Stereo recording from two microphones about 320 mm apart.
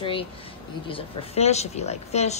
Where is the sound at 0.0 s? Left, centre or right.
Centre.